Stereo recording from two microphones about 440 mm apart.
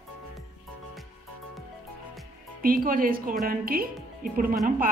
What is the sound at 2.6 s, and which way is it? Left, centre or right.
Speech, centre.